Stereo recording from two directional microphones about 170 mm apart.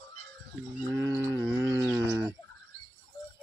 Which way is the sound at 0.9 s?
15° right (ahead or behind).